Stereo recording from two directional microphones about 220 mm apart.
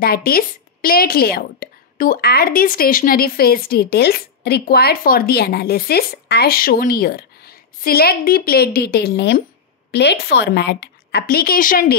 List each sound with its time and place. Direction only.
0.0 s a woman's voice: 45° left (ahead or behind)